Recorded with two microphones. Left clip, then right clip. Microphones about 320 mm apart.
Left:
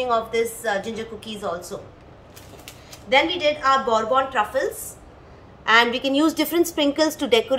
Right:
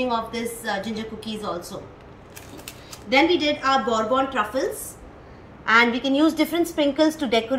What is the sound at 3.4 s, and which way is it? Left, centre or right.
A woman's voice, centre.